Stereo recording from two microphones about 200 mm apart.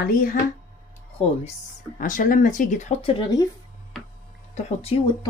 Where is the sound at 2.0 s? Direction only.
40° left (ahead or behind); by 3.5 s 20° left (ahead or behind).